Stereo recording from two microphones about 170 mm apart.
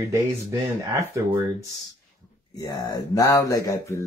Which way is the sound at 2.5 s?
20° left (ahead or behind).